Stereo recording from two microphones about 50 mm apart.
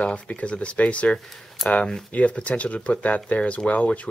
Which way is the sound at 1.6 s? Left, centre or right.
Centre.